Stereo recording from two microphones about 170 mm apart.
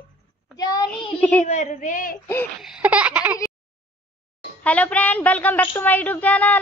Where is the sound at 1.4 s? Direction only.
45° left (ahead or behind).